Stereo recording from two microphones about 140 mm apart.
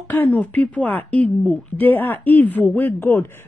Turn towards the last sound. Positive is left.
turn(degrees=15)  # may be behind; listen again after turning